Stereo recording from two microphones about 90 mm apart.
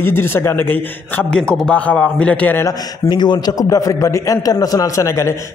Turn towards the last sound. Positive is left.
turn(degrees=30)  # may be behind; listen again after turning